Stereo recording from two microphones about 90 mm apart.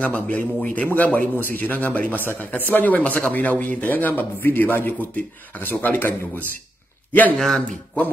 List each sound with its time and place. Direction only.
0.0 s a man's voice: 15° left (ahead or behind)
7.3 s speech: 5° left (ahead or behind)